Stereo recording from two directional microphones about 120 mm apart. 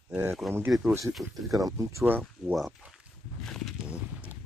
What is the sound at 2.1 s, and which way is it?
Speech, 15° right (ahead or behind).